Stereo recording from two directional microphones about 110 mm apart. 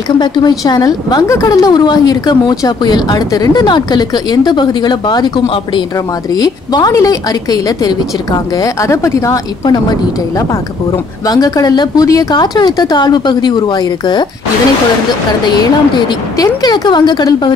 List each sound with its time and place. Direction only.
0.2 s a woman's voice: 40° left (ahead or behind)
11.2 s a woman's voice: 35° left (ahead or behind)
16.3 s a woman's voice: 40° left (ahead or behind)